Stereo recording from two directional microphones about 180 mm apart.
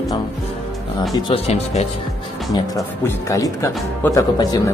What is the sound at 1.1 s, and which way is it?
Speech, 35° left (ahead or behind).